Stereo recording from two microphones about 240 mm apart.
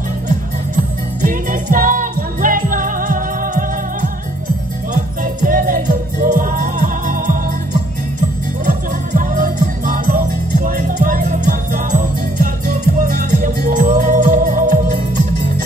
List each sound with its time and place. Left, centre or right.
1.2 s music: right
8.6 s music: right
10.6 s music: right